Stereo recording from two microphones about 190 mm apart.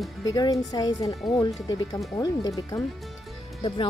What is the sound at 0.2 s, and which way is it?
Speech, 20° left (ahead or behind).